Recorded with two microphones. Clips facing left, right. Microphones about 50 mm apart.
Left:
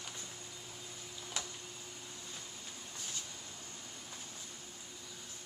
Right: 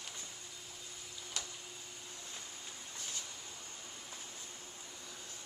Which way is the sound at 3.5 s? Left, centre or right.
Centre.